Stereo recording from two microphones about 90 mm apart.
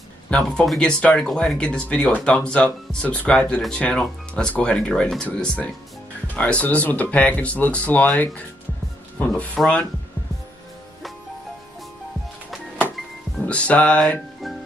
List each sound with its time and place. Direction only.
0.3 s speech: 15° left (ahead or behind)
9.6 s speech: 10° left (ahead or behind)
13.5 s speech: 15° left (ahead or behind)